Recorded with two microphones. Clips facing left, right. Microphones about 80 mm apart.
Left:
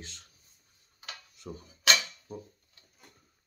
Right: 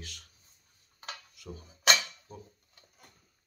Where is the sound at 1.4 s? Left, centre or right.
Left.